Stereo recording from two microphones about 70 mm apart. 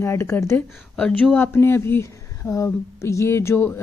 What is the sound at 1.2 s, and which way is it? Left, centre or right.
Speech, left.